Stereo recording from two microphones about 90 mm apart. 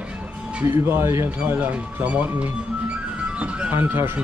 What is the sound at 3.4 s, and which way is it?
Speech, 15° right (ahead or behind).